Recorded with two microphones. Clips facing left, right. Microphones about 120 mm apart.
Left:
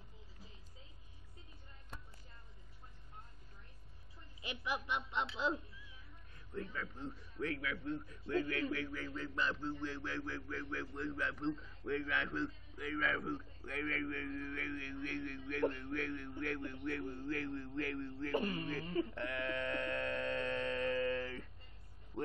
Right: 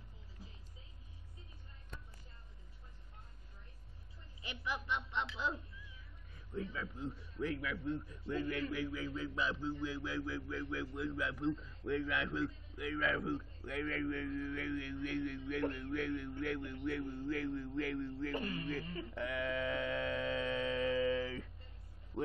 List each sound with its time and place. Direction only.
4.4 s a woman's voice: 15° left (ahead or behind)
6.3 s a man's voice: 10° right (ahead or behind)
18.3 s speech: 25° left (ahead or behind)
19.1 s a sound: 5° right (ahead or behind)
22.1 s vehicle: 20° right (ahead or behind)